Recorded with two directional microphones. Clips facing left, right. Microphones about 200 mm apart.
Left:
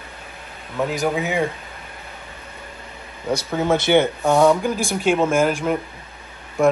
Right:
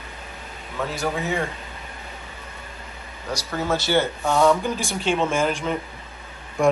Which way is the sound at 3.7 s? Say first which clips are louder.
Left 5 dB; 20° left (ahead or behind).